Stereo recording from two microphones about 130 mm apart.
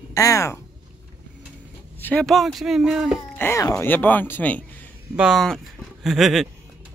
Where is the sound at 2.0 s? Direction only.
15° left (ahead or behind).